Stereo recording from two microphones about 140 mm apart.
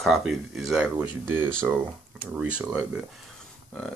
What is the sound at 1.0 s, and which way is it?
Speech, 15° right (ahead or behind).